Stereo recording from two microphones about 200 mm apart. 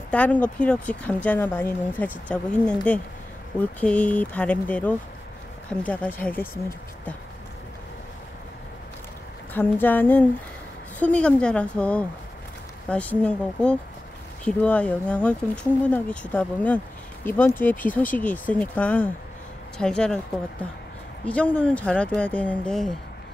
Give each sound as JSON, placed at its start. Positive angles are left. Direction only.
{"t": 0.1, "sound": "a woman's voice", "side_deg": 5}
{"t": 9.5, "sound": "a woman's voice", "side_deg": 10}
{"t": 21.3, "sound": "speech", "side_deg": 5}